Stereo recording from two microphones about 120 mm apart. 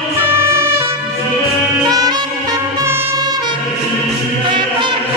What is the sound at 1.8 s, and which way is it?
Music, 35° right (ahead or behind).